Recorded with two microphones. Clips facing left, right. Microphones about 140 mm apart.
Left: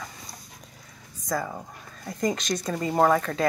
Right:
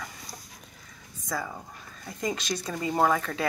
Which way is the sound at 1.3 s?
20° left (ahead or behind).